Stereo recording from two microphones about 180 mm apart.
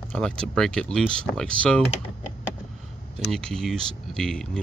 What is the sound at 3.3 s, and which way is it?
Speech, 5° left (ahead or behind).